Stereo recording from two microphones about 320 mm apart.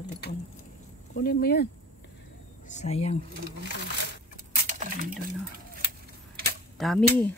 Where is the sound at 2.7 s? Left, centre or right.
Left.